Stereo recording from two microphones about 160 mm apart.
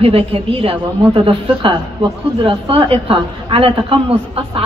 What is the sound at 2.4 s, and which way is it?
A woman's voice, 35° right (ahead or behind).